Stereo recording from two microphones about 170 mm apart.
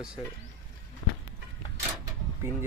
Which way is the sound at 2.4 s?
15° right (ahead or behind).